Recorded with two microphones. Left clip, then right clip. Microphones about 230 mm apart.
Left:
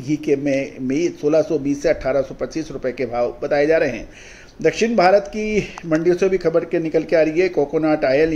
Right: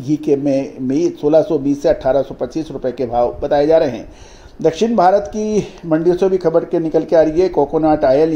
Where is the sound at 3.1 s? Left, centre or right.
Right.